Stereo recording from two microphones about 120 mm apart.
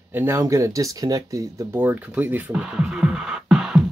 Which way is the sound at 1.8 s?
15° right (ahead or behind).